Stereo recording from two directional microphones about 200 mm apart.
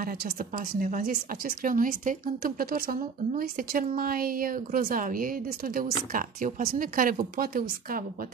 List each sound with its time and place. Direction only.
0.0 s a woman's voice: 45° right (ahead or behind)